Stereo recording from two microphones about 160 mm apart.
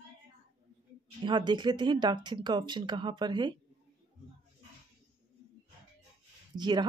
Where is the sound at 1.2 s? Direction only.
30° right (ahead or behind).